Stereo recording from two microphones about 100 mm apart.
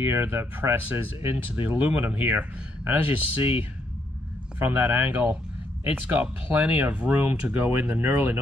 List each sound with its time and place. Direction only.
0.0 s speech: 25° right (ahead or behind)